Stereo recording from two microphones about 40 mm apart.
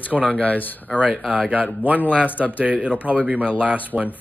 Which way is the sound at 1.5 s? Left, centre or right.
Right.